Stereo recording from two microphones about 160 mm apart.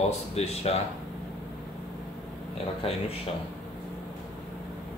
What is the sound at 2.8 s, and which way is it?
Speech, 40° left (ahead or behind).